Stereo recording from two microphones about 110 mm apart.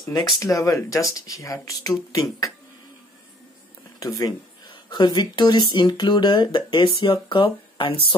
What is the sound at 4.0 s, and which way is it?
Speech, 35° left (ahead or behind).